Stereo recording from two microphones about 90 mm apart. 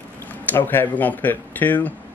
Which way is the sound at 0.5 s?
25° left (ahead or behind).